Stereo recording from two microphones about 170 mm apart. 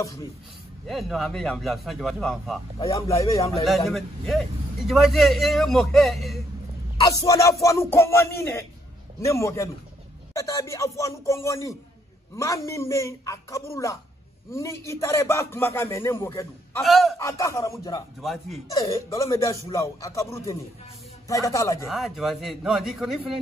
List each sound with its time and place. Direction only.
0.8 s a man's voice: centre (ahead or behind)
2.8 s speech: 20° left (ahead or behind)
3.6 s a man's voice: centre (ahead or behind)
7.0 s a man's voice: 20° left (ahead or behind)
16.8 s a man's voice: centre (ahead or behind)
17.2 s speech: 15° left (ahead or behind)
18.2 s a man's voice: centre (ahead or behind)
18.7 s speech: 20° left (ahead or behind)
21.8 s a man's voice: centre (ahead or behind)